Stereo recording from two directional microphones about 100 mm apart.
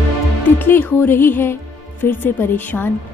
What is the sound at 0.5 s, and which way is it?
A woman's voice, 20° left (ahead or behind).